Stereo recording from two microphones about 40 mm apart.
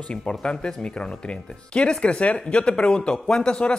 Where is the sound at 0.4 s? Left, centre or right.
Left.